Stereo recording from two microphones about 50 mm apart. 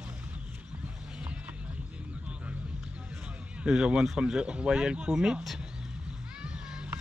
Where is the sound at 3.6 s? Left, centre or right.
Centre.